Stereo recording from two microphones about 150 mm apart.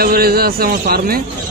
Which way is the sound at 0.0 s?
90° right.